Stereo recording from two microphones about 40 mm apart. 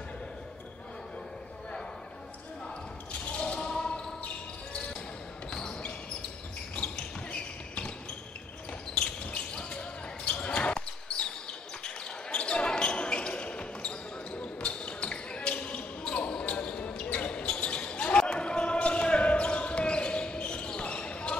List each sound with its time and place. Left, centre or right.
3.1 s a sound: left
3.5 s basketball bounce: left
5.5 s basketball bounce: left
8.9 s basketball bounce: left